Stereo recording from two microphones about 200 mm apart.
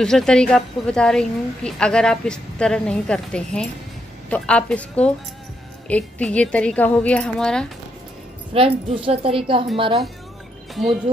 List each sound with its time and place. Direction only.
0.0 s a woman's voice: 5° left (ahead or behind)
8.5 s a woman's voice: 30° right (ahead or behind)
10.7 s speech: centre (ahead or behind)